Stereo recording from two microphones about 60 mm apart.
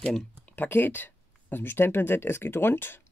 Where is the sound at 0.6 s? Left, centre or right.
Left.